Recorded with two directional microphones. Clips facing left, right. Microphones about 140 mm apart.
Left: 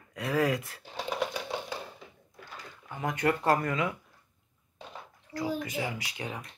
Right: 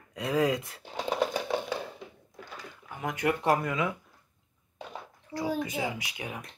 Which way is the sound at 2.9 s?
10° right (ahead or behind).